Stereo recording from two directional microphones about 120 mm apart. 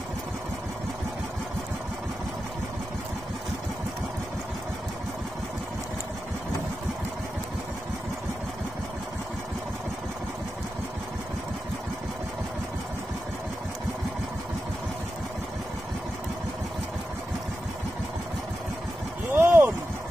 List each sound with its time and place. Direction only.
19.3 s vehicle: 15° right (ahead or behind)